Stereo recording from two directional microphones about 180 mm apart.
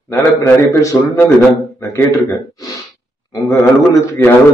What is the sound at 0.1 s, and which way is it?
A man's voice, 15° left (ahead or behind).